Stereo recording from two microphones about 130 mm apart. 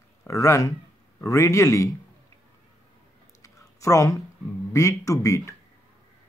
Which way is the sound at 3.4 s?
25° left (ahead or behind).